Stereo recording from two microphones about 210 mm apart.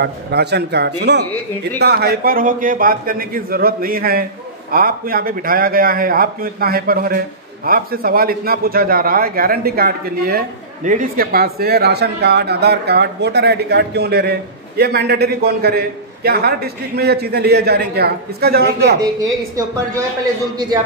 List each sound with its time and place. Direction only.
0.0 s a man's voice: 50° right (ahead or behind)
18.9 s a woman's voice: 15° right (ahead or behind)